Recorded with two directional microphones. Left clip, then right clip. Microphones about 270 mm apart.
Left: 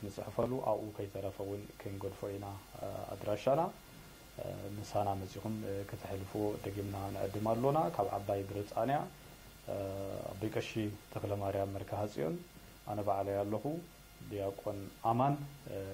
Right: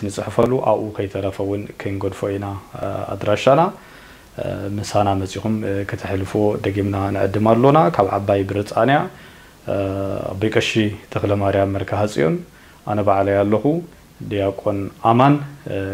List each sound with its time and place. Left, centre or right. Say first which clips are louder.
0.1 s speech: right 19 dB; right
4.9 s speech: right 17 dB; right